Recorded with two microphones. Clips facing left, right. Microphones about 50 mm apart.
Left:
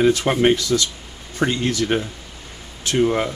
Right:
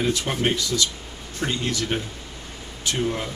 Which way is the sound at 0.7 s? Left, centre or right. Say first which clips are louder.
Left 4 dB; left.